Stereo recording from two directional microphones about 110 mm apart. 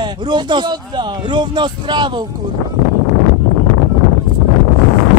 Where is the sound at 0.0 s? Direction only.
40° right (ahead or behind).